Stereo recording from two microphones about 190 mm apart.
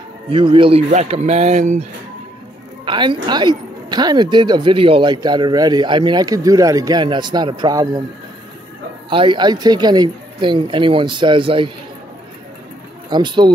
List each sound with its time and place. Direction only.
0.3 s speech: 25° right (ahead or behind)
2.8 s a woman's voice: 25° right (ahead or behind)
9.1 s speech: 25° right (ahead or behind)
13.1 s speech: 25° right (ahead or behind)